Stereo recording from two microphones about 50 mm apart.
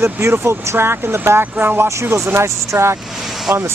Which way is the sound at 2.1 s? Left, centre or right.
Right.